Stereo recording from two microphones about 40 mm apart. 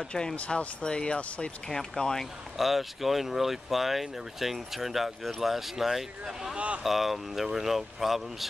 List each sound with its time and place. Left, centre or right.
0.5 s speech: centre
0.8 s speech: left
2.5 s speech: centre